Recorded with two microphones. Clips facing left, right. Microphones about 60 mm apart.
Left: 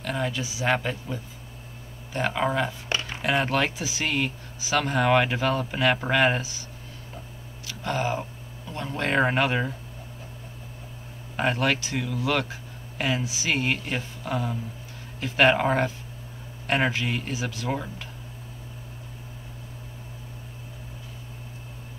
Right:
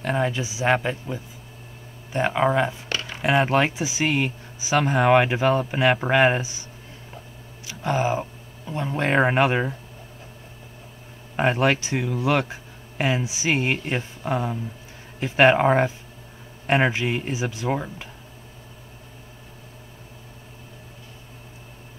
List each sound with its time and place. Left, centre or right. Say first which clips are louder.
0.0 s speech: right 5 dB; right
2.9 s a sound: even; left
3.2 s speech: right 5 dB; right
7.6 s speech: right 4 dB; centre
11.3 s speech: right 4 dB; right